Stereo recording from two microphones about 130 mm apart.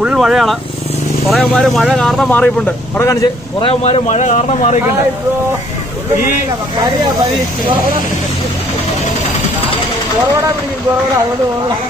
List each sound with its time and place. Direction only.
0.0 s speech: 5° right (ahead or behind); by 3.1 s 15° left (ahead or behind)
3.6 s speech: 50° left (ahead or behind); by 4.7 s 65° left (ahead or behind)